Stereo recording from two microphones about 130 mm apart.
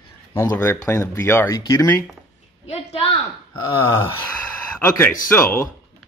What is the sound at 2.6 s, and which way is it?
Speech, 50° left (ahead or behind).